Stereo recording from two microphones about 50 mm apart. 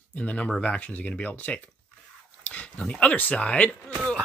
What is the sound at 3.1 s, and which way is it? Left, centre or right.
Speech, left.